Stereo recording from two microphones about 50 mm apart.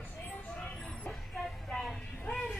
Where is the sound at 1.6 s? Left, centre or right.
Centre.